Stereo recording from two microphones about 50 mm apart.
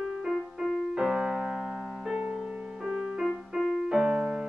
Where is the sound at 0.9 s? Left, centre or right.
Centre.